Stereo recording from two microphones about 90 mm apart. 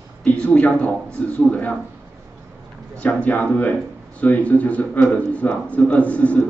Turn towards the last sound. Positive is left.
turn(degrees=15)  # may be behind; listen again after turning